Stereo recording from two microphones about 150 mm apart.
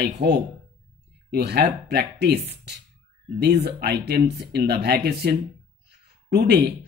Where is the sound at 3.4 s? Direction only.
90° right.